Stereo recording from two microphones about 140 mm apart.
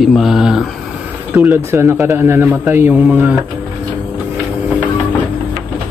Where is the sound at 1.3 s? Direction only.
20° right (ahead or behind).